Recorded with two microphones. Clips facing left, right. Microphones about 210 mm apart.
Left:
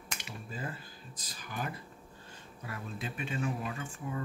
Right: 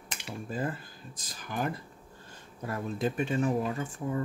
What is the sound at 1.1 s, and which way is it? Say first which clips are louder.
Speech: right 6 dB; 45° right (ahead or behind).